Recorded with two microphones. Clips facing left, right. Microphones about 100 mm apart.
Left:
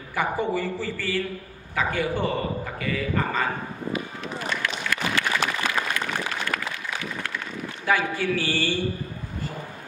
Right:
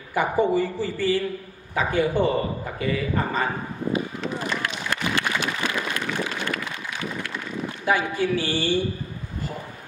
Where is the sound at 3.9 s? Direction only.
30° right (ahead or behind).